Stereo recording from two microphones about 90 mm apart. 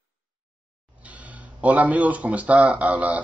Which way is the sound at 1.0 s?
15° right (ahead or behind).